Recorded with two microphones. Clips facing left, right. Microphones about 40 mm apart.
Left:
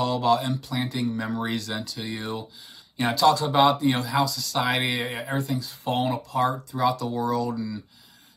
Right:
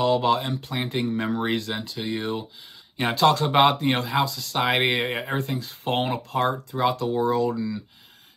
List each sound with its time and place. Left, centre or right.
0.0 s speech: right
0.6 s speech: right
3.2 s speech: right
5.4 s speech: right
7.5 s speech: centre